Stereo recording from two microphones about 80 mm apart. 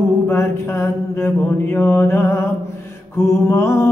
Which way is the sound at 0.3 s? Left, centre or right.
Left.